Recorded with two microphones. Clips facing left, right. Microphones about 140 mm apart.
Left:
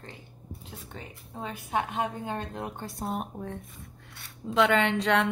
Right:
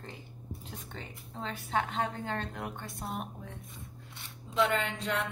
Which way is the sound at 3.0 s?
50° left (ahead or behind).